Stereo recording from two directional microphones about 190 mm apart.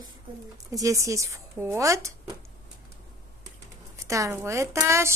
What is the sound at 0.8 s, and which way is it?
Speech, 15° right (ahead or behind).